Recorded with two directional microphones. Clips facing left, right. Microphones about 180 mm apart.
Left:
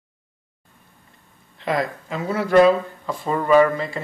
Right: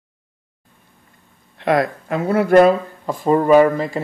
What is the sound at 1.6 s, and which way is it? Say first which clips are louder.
Speech: right 6 dB; 60° right (ahead or behind).